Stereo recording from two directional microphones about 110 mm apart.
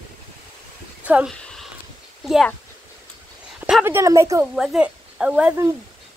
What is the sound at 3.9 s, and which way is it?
Speech, 25° right (ahead or behind).